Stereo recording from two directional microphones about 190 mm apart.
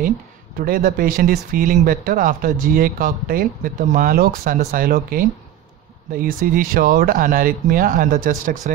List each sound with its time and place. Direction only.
0.6 s speech: 50° right (ahead or behind)